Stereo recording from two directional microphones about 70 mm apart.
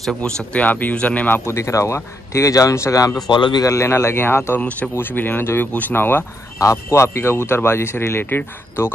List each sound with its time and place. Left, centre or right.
0.2 s a man's voice: centre
1.5 s a man's voice: left
3.3 s a man's voice: left
3.6 s speech: left
4.6 s a man's voice: left
6.6 s speech: left